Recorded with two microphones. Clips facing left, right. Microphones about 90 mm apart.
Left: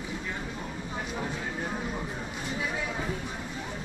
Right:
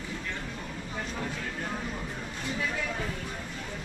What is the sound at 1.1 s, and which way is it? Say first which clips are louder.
Vehicle: left 3 dB; 15° left (ahead or behind).